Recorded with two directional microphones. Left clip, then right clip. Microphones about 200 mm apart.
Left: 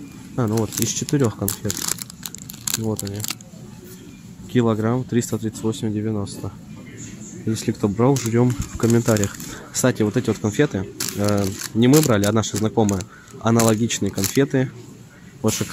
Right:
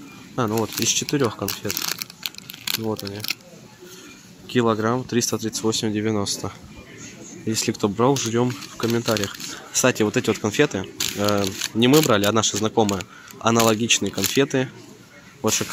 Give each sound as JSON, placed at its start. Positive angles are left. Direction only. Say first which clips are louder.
{"t": 0.4, "sound": "speech", "louder": "even", "side_deg": 5}
{"t": 1.1, "sound": "crumpling", "louder": "left 1 dB", "side_deg": 5}
{"t": 3.1, "sound": "speech", "louder": "right 2 dB", "side_deg": 15}
{"t": 4.5, "sound": "speech", "louder": "even", "side_deg": 5}
{"t": 7.5, "sound": "speech", "louder": "right 1 dB", "side_deg": 0}